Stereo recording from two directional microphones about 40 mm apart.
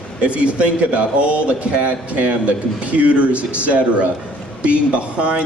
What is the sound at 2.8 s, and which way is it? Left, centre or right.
Speech, right.